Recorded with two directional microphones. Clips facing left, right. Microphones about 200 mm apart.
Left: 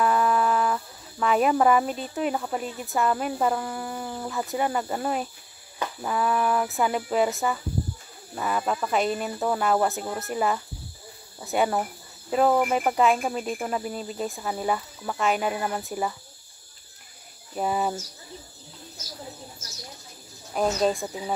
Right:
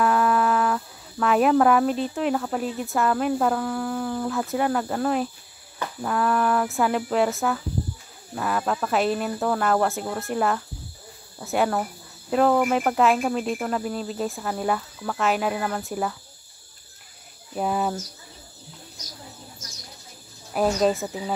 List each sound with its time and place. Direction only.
0.0 s cricket: centre (ahead or behind)
17.6 s cricket: centre (ahead or behind)
20.5 s cricket: 5° right (ahead or behind)